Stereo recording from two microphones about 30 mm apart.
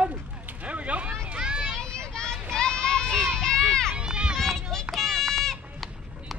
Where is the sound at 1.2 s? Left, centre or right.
Right.